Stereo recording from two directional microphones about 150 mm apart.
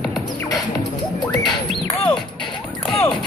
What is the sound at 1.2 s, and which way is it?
Music, 5° left (ahead or behind).